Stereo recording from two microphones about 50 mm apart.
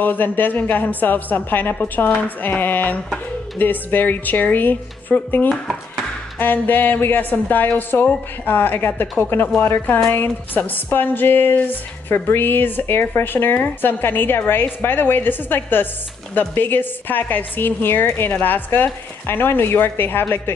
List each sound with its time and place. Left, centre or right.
0.0 s a woman's voice: left